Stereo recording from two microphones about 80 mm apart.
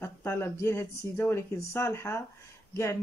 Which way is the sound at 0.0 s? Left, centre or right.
Left.